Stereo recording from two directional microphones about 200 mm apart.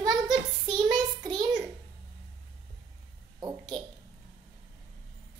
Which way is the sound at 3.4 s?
20° right (ahead or behind).